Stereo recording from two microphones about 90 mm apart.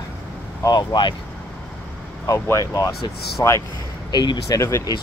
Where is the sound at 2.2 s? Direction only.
35° left (ahead or behind).